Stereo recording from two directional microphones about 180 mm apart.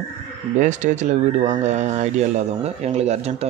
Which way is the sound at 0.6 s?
45° right (ahead or behind).